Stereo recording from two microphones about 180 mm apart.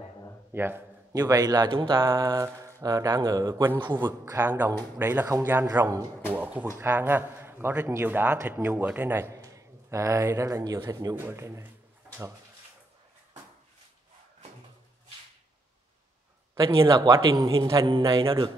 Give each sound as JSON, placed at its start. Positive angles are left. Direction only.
{"t": 0.5, "sound": "speech", "side_deg": -10}
{"t": 6.3, "sound": "a man's voice", "side_deg": -10}
{"t": 16.5, "sound": "speech", "side_deg": -25}